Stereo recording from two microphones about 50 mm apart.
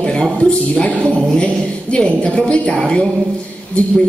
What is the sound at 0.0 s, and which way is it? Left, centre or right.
A woman's voice, centre.